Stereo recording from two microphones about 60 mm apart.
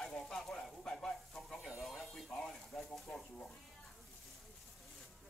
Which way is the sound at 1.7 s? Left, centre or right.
Centre.